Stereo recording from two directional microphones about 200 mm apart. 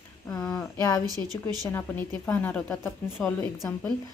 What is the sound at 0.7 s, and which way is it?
Speech, 15° left (ahead or behind).